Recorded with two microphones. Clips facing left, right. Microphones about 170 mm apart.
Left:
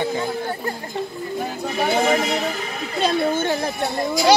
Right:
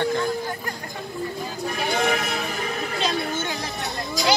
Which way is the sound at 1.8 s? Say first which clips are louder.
Left 5 dB; 55° left (ahead or behind).